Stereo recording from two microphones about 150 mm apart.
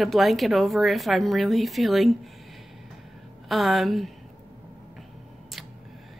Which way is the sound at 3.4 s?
Centre (ahead or behind).